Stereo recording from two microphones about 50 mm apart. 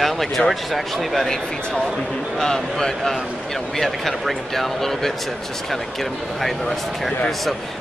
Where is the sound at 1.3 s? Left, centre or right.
Centre.